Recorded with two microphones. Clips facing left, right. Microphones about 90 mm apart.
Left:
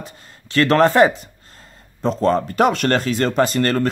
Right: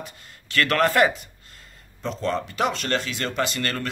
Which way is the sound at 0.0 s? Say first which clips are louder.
Left 2 dB; 30° left (ahead or behind).